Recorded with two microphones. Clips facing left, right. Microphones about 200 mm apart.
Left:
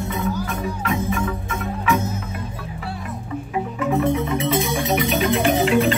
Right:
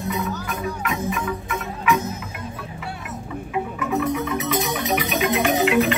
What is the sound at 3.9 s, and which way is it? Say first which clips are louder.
Music: left 2 dB; 25° left (ahead or behind).